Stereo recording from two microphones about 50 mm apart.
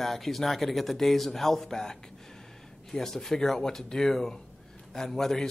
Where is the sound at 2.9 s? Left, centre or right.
Centre.